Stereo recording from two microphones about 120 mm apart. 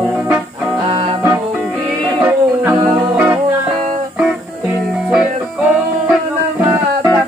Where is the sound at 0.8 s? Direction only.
55° right (ahead or behind).